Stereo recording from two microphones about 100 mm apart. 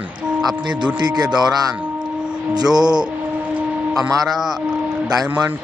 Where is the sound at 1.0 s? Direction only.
45° right (ahead or behind).